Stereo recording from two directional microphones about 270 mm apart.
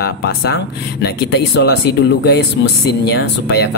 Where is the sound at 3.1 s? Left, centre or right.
Left.